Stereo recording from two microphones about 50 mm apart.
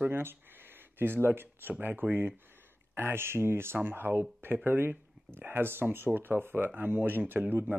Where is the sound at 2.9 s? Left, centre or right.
Right.